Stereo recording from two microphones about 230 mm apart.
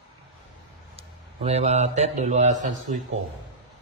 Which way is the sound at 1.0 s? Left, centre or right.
Right.